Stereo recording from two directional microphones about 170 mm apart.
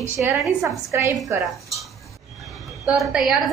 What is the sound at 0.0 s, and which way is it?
A woman's voice, 15° right (ahead or behind).